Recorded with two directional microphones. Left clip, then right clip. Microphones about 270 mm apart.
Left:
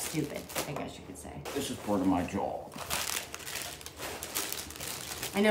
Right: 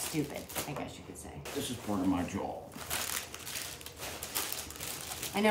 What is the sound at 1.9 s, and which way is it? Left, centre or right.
Speech, left.